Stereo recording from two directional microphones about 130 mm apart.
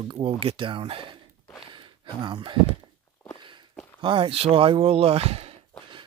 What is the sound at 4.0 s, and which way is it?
Speech, 40° right (ahead or behind).